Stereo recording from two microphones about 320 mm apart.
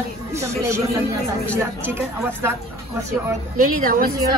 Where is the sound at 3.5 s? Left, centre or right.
Right.